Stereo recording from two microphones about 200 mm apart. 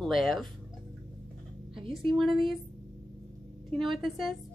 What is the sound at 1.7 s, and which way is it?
Speech, 25° right (ahead or behind).